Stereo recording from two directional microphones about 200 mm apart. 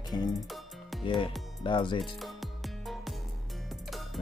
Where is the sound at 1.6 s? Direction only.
25° left (ahead or behind).